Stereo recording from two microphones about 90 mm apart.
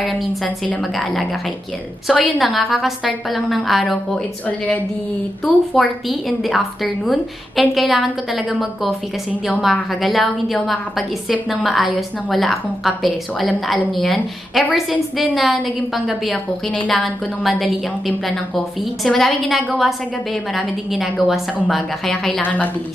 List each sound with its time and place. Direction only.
0.0 s a woman's voice: centre (ahead or behind)
2.0 s a woman's voice: centre (ahead or behind)
22.4 s a woman's voice: 20° left (ahead or behind)